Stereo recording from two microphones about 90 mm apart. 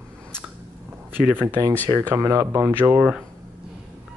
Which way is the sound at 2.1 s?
35° right (ahead or behind).